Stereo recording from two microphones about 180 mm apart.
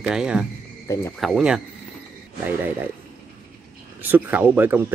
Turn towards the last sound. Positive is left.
turn(degrees=-10)  # may be behind; listen again after turning